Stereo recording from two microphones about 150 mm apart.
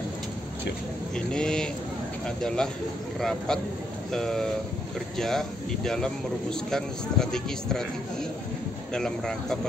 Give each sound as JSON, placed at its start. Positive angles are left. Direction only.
{"t": 1.1, "sound": "speech", "side_deg": 5}